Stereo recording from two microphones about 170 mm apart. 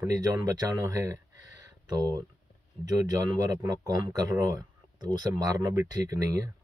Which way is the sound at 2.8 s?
20° right (ahead or behind).